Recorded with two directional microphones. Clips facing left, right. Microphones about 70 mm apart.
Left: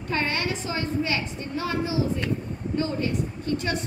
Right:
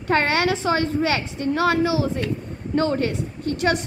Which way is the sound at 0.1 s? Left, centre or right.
Right.